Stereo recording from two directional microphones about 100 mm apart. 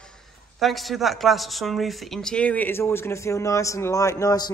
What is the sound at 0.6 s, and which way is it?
Speech, centre (ahead or behind).